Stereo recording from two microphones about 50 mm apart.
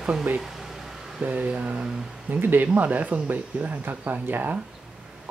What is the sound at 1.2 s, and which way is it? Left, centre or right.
Speech, right.